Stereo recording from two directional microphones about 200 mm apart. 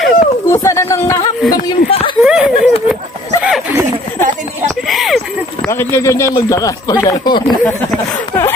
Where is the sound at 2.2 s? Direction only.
5° right (ahead or behind).